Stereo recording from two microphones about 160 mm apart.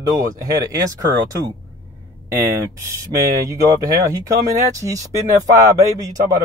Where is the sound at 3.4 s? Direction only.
25° right (ahead or behind).